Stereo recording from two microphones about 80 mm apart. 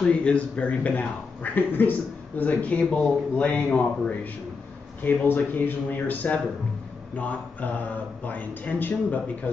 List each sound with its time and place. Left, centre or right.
0.0 s speech: centre